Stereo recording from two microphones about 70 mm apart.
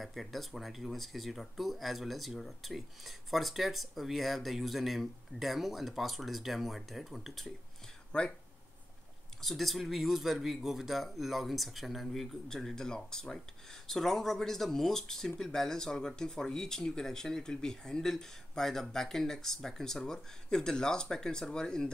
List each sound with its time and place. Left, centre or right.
0.0 s speech: centre
8.1 s speech: centre
9.4 s speech: centre